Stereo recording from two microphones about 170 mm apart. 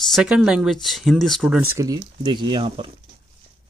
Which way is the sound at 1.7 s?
20° right (ahead or behind).